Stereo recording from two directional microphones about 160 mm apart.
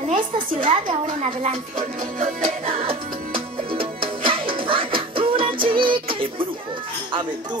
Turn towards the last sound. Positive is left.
turn(degrees=-35)  # may be behind; listen again after turning